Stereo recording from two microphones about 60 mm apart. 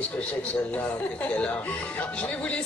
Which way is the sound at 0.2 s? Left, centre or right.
Left.